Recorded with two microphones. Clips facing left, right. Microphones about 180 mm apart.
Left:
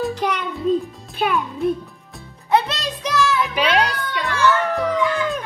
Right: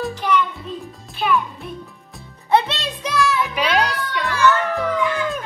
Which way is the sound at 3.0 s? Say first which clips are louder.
Even; centre (ahead or behind).